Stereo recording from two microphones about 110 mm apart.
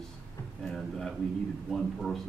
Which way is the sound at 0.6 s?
5° left (ahead or behind).